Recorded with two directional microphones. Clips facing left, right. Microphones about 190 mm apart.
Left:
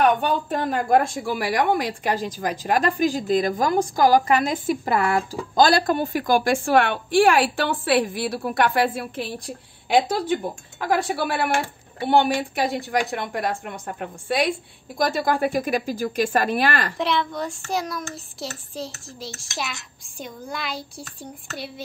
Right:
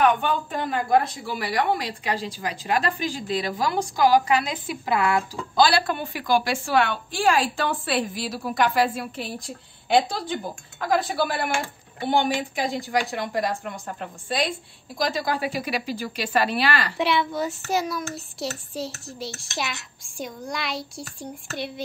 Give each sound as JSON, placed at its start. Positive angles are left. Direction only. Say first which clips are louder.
{"t": 0.0, "sound": "a woman's voice", "louder": "left 1 dB", "side_deg": 40}
{"t": 10.8, "sound": "a woman's voice", "louder": "even", "side_deg": 60}
{"t": 16.9, "sound": "a child's voice", "louder": "right 1 dB", "side_deg": -5}